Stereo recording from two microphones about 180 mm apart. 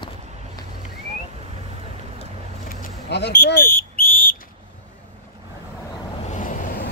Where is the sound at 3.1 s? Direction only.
65° left (ahead or behind).